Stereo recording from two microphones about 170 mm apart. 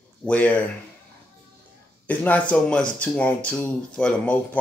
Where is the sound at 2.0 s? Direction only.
10° left (ahead or behind).